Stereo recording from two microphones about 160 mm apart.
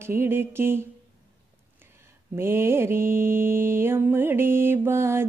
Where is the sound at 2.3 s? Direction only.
15° right (ahead or behind).